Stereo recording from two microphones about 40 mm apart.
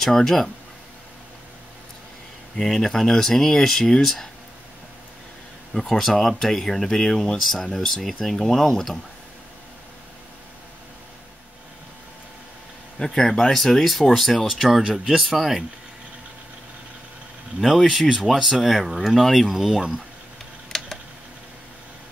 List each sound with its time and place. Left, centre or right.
0.0 s speech: centre
2.5 s speech: centre
5.7 s speech: centre
13.0 s speech: centre
17.6 s speech: centre
19.7 s speech: centre
20.7 s tick: centre